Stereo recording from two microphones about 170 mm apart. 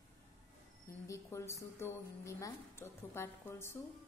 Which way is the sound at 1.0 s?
15° left (ahead or behind).